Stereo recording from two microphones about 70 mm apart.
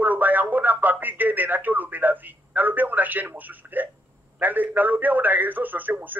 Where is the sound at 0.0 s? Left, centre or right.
Right.